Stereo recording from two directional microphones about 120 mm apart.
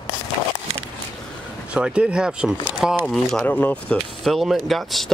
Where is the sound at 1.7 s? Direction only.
10° right (ahead or behind).